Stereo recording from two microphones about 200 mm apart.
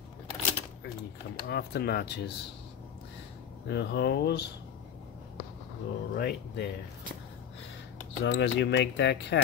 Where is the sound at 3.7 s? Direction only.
55° left (ahead or behind).